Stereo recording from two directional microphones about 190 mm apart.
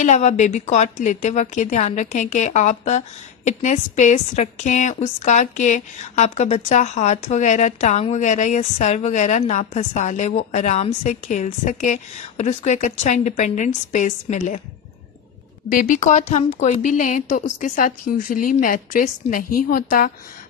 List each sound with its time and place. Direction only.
0.0 s a woman's voice: 40° left (ahead or behind)
15.7 s a woman's voice: 45° left (ahead or behind)